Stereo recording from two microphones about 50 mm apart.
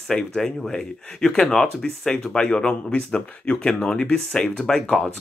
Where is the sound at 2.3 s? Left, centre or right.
Centre.